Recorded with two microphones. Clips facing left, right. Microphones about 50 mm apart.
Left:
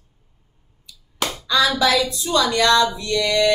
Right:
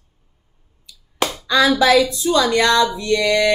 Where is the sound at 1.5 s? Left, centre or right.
Right.